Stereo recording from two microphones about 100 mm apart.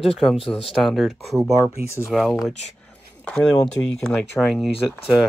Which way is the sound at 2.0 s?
5° right (ahead or behind).